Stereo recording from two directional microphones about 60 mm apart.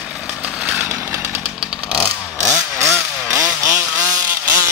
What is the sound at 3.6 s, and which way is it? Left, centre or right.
Vehicle, right.